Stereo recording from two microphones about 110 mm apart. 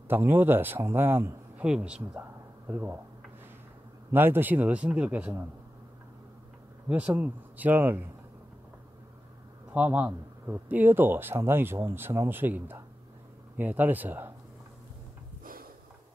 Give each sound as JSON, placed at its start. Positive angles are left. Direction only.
{"t": 0.1, "sound": "speech", "side_deg": -20}
{"t": 1.6, "sound": "speech", "side_deg": -10}
{"t": 4.1, "sound": "speech", "side_deg": -20}
{"t": 6.9, "sound": "speech", "side_deg": -15}
{"t": 9.8, "sound": "speech", "side_deg": -10}